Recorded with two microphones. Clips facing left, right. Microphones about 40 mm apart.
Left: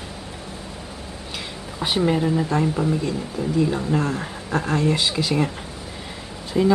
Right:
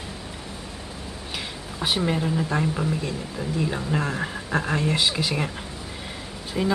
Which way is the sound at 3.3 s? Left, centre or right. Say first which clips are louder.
Left 6 dB; centre.